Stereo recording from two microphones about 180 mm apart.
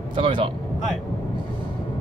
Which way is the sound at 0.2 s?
30° right (ahead or behind).